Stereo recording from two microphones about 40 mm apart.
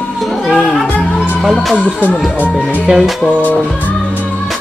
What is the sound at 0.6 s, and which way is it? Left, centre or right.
Music, left.